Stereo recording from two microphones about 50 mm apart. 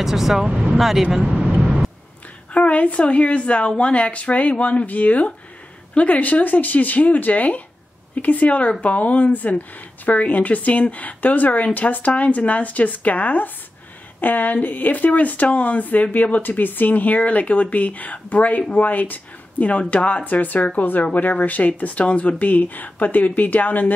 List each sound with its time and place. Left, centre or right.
0.0 s speech: centre
1.4 s vehicle: right
2.5 s a woman's voice: left